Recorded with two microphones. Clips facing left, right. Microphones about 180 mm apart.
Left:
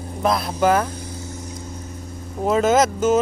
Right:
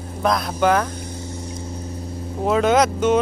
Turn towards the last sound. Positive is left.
turn(degrees=5)  # may be behind; listen again after turning